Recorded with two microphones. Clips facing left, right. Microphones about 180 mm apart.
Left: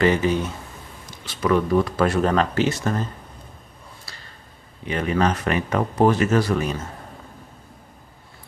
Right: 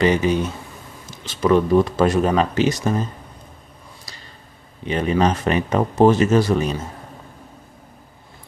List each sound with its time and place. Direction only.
0.0 s speech: 20° right (ahead or behind)
2.1 s speech: 10° right (ahead or behind)
4.1 s a sound: 15° right (ahead or behind)
4.8 s speech: 20° right (ahead or behind)